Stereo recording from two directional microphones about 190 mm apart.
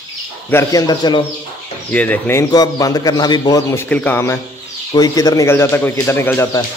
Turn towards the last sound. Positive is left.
turn(degrees=15)  # may be behind; listen again after turning